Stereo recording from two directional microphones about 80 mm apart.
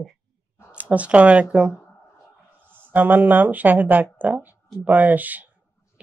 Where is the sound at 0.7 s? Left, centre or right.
Centre.